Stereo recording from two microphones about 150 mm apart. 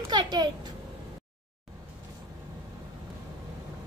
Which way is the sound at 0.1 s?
30° right (ahead or behind).